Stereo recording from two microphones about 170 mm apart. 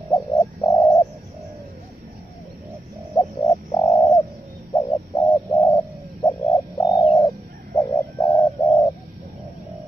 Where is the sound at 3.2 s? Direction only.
15° left (ahead or behind).